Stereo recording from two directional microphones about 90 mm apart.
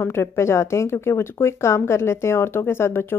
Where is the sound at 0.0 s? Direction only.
30° left (ahead or behind).